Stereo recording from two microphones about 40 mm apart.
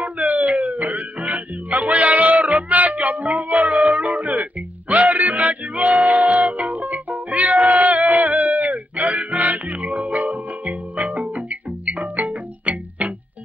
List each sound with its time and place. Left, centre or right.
0.0 s music: right